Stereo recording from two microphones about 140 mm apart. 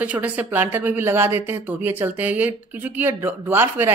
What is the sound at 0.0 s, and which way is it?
A woman's voice, 10° right (ahead or behind).